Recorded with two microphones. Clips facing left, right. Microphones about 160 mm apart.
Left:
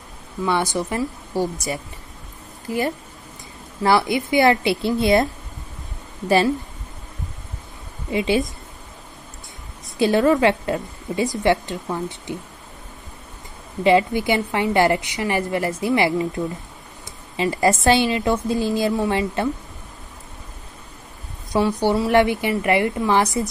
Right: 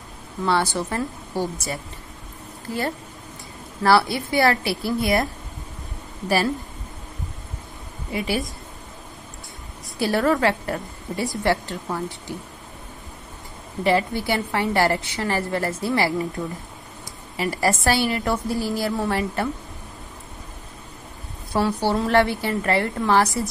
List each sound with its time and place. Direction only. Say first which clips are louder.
0.5 s a woman's voice: even; 15° left (ahead or behind)
3.8 s a woman's voice: even; 20° left (ahead or behind)
8.1 s a woman's voice: left 5 dB; 20° left (ahead or behind)
9.9 s a woman's voice: left 4 dB; 20° left (ahead or behind)
13.8 s a woman's voice: left 4 dB; 20° left (ahead or behind)
17.4 s a woman's voice: left 4 dB; 20° left (ahead or behind)
21.5 s a woman's voice: left 3 dB; 15° left (ahead or behind)